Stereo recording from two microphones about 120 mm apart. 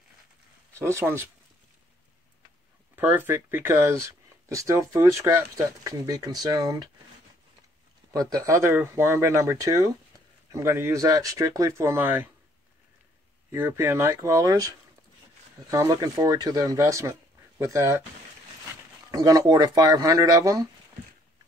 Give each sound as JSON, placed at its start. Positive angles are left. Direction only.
{"t": 0.7, "sound": "speech", "side_deg": -20}
{"t": 3.0, "sound": "speech", "side_deg": -15}
{"t": 8.1, "sound": "speech", "side_deg": -30}
{"t": 13.5, "sound": "speech", "side_deg": -20}
{"t": 15.7, "sound": "speech", "side_deg": -30}
{"t": 19.0, "sound": "speech", "side_deg": -30}